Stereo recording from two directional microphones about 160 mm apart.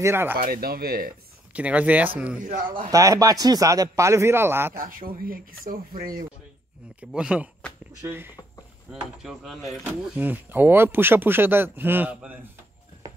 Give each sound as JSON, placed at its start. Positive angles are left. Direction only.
{"t": 0.0, "sound": "speech", "side_deg": -15}
{"t": 0.4, "sound": "speech", "side_deg": -70}
{"t": 1.5, "sound": "speech", "side_deg": -10}
{"t": 2.4, "sound": "speech", "side_deg": -55}
{"t": 2.9, "sound": "a man's voice", "side_deg": -20}
{"t": 4.7, "sound": "speech", "side_deg": -60}
{"t": 7.0, "sound": "speech", "side_deg": -5}
{"t": 9.2, "sound": "speech", "side_deg": 0}